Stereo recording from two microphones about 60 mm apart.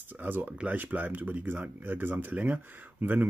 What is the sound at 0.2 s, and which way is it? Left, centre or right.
Speech, right.